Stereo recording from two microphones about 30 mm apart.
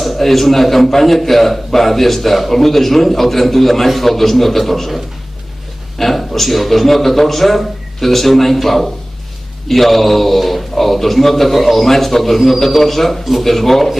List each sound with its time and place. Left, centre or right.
0.0 s a man's voice: centre